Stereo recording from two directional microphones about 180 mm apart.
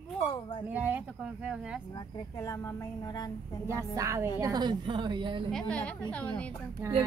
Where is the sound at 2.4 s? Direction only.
15° left (ahead or behind).